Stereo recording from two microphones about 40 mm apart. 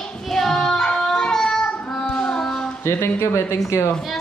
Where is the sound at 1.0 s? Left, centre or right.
Centre.